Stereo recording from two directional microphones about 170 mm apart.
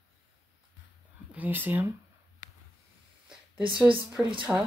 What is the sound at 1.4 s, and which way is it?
Speech, 10° right (ahead or behind).